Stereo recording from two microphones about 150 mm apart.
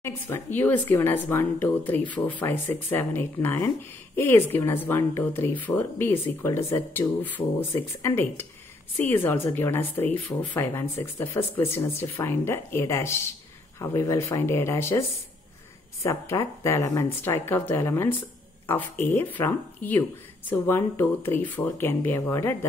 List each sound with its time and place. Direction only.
0.0 s speech: 15° left (ahead or behind)